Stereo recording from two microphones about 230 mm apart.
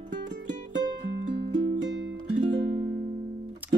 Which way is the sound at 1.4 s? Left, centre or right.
Right.